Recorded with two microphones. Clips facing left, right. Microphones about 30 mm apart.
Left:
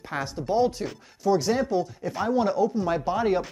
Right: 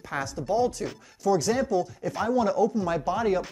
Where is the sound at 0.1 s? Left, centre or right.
Left.